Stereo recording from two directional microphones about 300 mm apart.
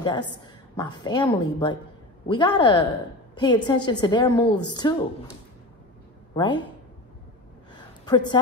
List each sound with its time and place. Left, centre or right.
0.0 s a woman's voice: centre
6.3 s speech: centre
7.7 s a sound: centre